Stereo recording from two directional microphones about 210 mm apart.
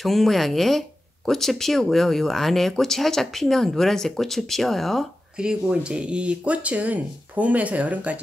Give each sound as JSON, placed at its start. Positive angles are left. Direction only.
{"t": 0.0, "sound": "speech", "side_deg": 0}